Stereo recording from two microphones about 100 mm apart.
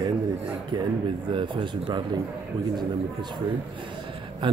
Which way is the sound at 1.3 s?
50° right (ahead or behind).